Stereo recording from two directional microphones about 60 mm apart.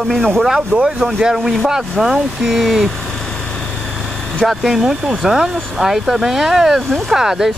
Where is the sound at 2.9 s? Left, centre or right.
Centre.